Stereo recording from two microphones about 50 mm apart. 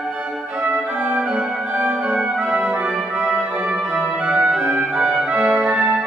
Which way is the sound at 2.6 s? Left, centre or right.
Right.